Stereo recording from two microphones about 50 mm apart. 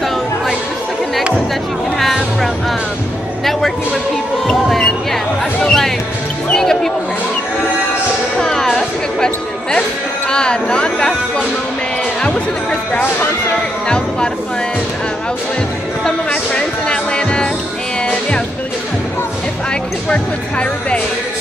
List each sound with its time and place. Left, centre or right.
4.6 s music: centre
8.4 s music: centre
9.2 s a sound: centre
10.3 s speech: centre
13.8 s speech: centre
16.3 s music: left
20.1 s speech: left